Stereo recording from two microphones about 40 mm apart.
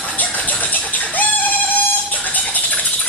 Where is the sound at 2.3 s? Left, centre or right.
Left.